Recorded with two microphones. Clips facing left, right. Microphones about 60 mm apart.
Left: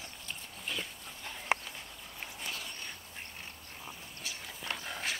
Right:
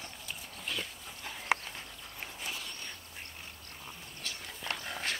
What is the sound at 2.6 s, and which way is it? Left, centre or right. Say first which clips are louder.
Duck: even; centre.